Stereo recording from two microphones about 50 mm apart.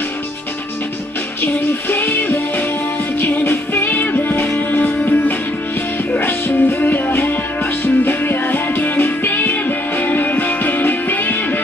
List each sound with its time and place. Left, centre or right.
1.4 s music: left